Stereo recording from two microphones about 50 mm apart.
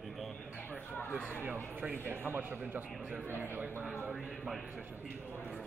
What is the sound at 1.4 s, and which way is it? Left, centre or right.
A man's voice, right.